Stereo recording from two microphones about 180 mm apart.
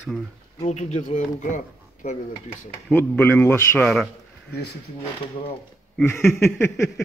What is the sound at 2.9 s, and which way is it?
A man's voice, 10° left (ahead or behind).